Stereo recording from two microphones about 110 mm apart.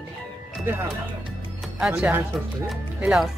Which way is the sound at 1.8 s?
10° right (ahead or behind).